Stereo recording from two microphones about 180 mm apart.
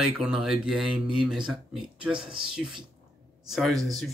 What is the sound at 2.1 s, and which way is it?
Speech, 25° right (ahead or behind).